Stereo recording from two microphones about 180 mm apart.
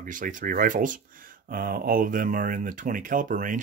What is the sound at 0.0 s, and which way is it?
Speech, 45° right (ahead or behind).